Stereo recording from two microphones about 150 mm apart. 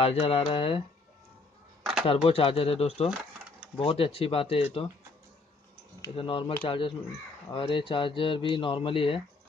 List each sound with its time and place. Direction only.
0.0 s speech: 45° left (ahead or behind)
1.8 s a sound: 5° right (ahead or behind)
2.0 s speech: 40° left (ahead or behind)
6.1 s speech: 40° left (ahead or behind)